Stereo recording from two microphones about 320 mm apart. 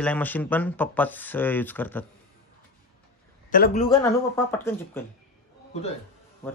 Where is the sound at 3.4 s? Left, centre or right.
Left.